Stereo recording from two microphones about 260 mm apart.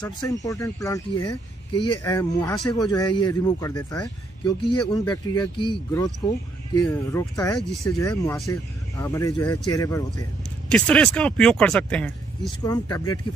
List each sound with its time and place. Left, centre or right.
0.0 s speech: centre
1.2 s speech: left
1.9 s speech: centre
12.4 s speech: centre